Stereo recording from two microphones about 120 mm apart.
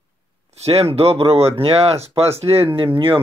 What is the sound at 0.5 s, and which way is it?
Speech, 55° right (ahead or behind).